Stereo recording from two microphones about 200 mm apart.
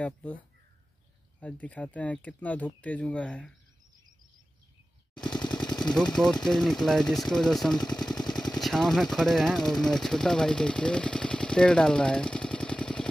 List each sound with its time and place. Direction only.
0.0 s speech: 10° left (ahead or behind)
1.4 s speech: 5° left (ahead or behind)
5.3 s machine gun: 20° left (ahead or behind)
5.8 s speech: 5° left (ahead or behind)